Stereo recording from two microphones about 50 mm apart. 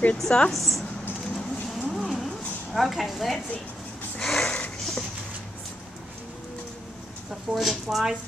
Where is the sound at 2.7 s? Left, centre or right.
Centre.